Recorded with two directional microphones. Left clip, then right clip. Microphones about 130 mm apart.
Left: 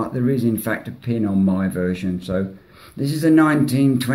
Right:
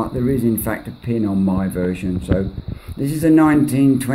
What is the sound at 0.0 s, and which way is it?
Speech, 30° right (ahead or behind).